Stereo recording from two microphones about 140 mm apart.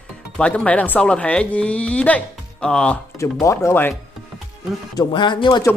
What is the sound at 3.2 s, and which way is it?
Speech, 20° left (ahead or behind).